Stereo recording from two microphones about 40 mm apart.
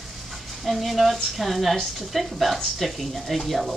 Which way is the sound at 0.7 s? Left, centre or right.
Centre.